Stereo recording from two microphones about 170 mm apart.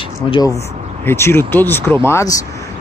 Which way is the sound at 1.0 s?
15° left (ahead or behind).